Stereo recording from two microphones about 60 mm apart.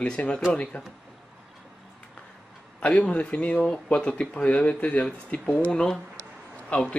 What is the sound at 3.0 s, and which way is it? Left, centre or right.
Speech, left.